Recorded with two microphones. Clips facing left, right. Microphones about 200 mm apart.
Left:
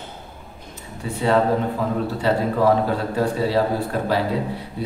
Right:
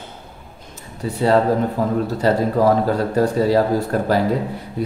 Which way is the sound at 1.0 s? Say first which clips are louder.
Right 4 dB; 40° right (ahead or behind).